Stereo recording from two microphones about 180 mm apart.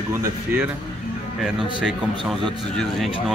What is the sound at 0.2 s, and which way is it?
Speech, 10° right (ahead or behind).